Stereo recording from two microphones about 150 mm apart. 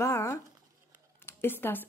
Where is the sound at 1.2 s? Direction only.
15° left (ahead or behind).